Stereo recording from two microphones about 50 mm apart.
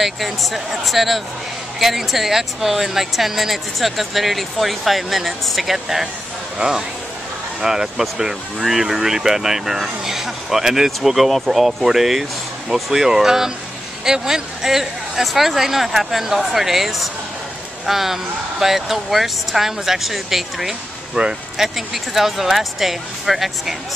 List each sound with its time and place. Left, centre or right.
0.0 s speech: centre
6.6 s speech: right
7.6 s speech: centre